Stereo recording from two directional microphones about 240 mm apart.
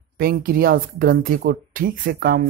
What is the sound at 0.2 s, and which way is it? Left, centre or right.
Speech, right.